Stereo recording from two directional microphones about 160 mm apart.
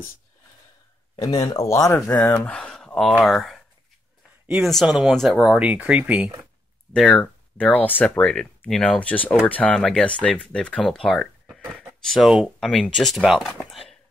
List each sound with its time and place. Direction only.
1.1 s speech: 30° left (ahead or behind)
1.7 s speech: 20° left (ahead or behind)
2.3 s speech: 5° left (ahead or behind)
6.9 s speech: 5° left (ahead or behind)